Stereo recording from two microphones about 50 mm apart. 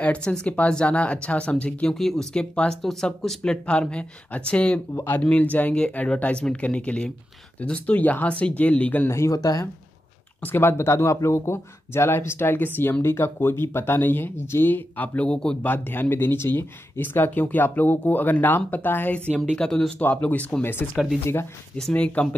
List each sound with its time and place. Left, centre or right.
0.0 s speech: left
1.9 s speech: centre
3.6 s speech: left
9.0 s speech: left
10.4 s speech: left
13.0 s speech: left
15.1 s speech: centre
15.6 s speech: left
19.3 s speech: centre
20.0 s speech: left